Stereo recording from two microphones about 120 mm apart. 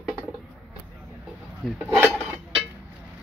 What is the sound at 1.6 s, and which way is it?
Speech, centre (ahead or behind).